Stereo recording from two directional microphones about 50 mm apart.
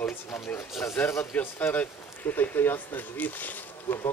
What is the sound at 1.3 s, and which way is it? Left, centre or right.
Speech, left.